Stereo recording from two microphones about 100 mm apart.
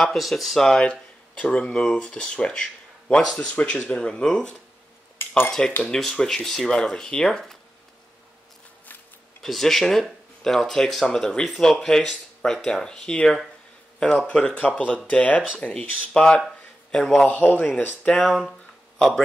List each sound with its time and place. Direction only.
0.0 s speech: centre (ahead or behind)
5.9 s speech: 5° left (ahead or behind)
9.4 s speech: centre (ahead or behind)